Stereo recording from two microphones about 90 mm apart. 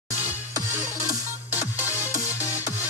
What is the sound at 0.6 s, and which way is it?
Music, 35° left (ahead or behind).